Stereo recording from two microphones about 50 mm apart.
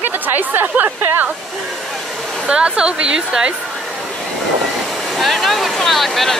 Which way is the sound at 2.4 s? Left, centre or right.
Centre.